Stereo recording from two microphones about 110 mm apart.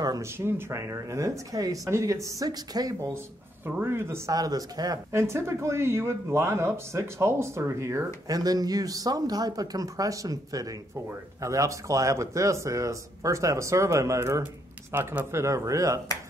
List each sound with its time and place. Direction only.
0.0 s speech: 30° right (ahead or behind)
4.3 s speech: 35° right (ahead or behind)